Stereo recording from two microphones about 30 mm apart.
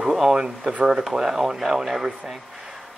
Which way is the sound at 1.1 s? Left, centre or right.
Centre.